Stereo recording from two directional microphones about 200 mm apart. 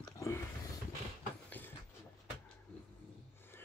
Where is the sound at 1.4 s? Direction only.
10° left (ahead or behind).